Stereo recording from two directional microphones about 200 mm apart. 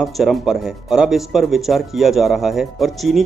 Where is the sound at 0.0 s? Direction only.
Centre (ahead or behind).